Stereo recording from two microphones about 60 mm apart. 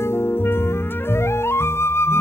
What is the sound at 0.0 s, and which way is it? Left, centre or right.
Music, left.